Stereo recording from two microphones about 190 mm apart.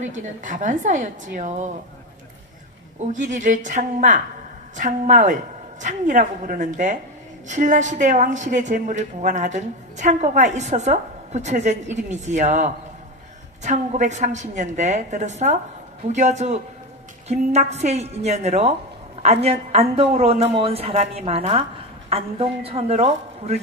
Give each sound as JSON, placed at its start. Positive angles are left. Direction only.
{"t": 0.0, "sound": "a woman's voice", "side_deg": -40}
{"t": 3.1, "sound": "a woman's voice", "side_deg": -40}